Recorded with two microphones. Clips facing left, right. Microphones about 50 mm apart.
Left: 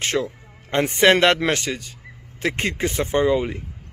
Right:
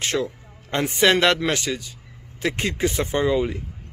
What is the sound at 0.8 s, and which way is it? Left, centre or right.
Speech, left.